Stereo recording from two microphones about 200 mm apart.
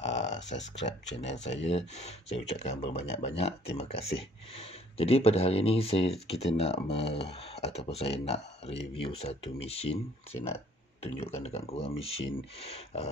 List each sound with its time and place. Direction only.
0.0 s a sound: 35° left (ahead or behind)
0.8 s speech: 65° left (ahead or behind)
1.3 s speech: 35° left (ahead or behind)